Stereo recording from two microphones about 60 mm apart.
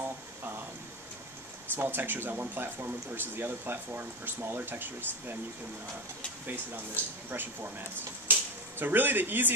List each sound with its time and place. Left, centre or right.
1.8 s speech: right
6.4 s speech: right
8.3 s a sound: right